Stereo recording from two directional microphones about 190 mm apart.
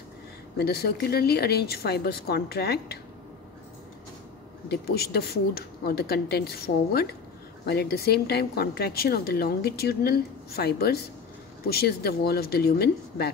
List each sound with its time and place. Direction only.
0.6 s a woman's voice: 55° left (ahead or behind)
4.6 s a woman's voice: 55° left (ahead or behind)